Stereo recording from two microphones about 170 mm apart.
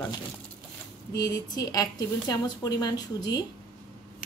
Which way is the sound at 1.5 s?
20° left (ahead or behind).